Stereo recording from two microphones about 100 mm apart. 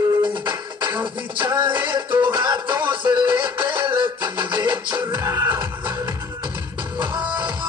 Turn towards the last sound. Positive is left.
turn(degrees=-50)  # may be behind; listen again after turning